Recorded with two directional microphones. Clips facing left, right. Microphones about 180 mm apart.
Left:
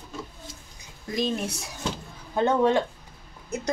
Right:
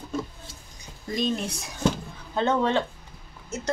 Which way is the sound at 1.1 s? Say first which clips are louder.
Even; 5° left (ahead or behind).